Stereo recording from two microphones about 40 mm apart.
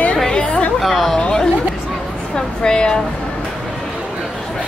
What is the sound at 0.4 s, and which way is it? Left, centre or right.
Chatter, left.